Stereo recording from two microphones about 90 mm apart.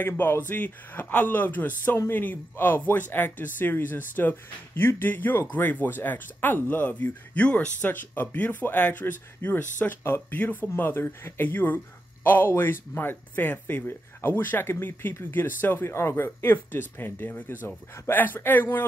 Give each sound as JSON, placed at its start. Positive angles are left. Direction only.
{"t": 0.0, "sound": "speech", "side_deg": 25}